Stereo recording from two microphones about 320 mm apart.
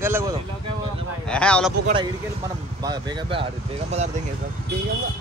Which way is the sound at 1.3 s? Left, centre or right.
Centre.